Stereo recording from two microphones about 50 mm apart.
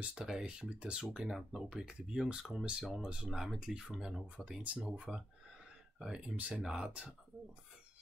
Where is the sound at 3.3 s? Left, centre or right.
Centre.